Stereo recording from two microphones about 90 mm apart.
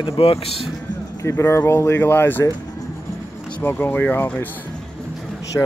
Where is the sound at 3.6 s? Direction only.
25° left (ahead or behind).